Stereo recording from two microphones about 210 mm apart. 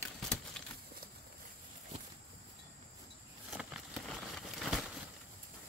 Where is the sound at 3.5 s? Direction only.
5° right (ahead or behind).